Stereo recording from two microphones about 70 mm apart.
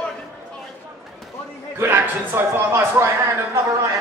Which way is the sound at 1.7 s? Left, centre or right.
Right.